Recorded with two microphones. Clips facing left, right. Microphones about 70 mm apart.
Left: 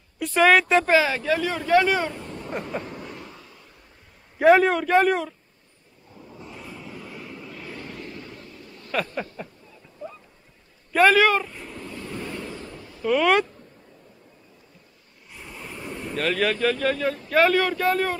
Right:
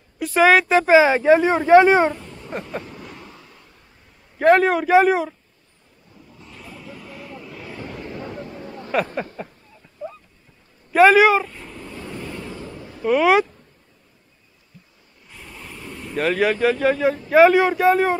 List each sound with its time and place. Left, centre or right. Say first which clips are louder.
0.2 s speech: right 3 dB; centre
0.9 s speech: right 8 dB; right
2.3 s a sound: even; centre
4.4 s speech: right 1 dB; centre
6.1 s a sound: left 3 dB; centre
6.6 s vehicle: right 3 dB; centre
8.1 s vehicle: right 8 dB; right
9.4 s speech: right 3 dB; centre
10.9 s speech: right 5 dB; centre
12.1 s vehicle: right 1 dB; centre
12.5 s a sound: right 3 dB; centre
13.0 s speech: right 4 dB; centre
15.3 s vehicle: left 1 dB; centre
16.2 s speech: right 4 dB; centre